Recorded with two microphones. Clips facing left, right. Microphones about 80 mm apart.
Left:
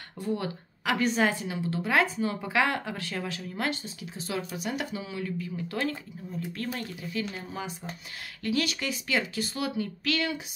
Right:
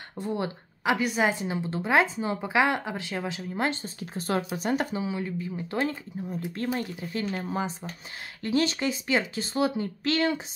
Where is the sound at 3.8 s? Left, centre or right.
Right.